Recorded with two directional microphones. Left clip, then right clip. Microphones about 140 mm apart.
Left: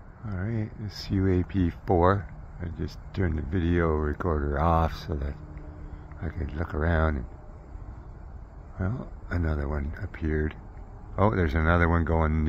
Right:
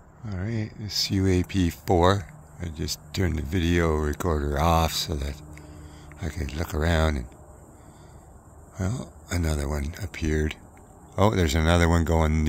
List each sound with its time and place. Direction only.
0.2 s speech: 20° right (ahead or behind)
8.7 s speech: 25° right (ahead or behind)